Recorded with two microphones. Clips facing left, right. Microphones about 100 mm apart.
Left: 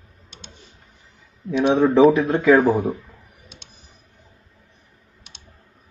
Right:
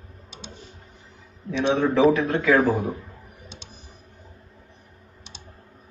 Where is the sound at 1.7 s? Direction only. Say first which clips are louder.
Left 4 dB; 30° left (ahead or behind).